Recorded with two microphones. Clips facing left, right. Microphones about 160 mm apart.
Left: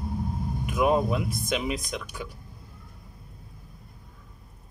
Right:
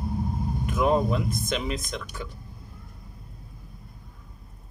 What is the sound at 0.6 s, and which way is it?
Speech, 10° left (ahead or behind).